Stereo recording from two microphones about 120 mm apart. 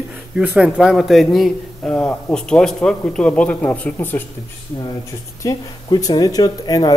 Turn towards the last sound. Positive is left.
turn(degrees=35)  # may be behind; listen again after turning